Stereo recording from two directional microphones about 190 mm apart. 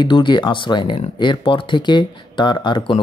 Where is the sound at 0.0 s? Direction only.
25° left (ahead or behind).